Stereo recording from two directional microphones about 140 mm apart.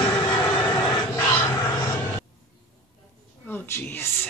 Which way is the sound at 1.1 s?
15° left (ahead or behind).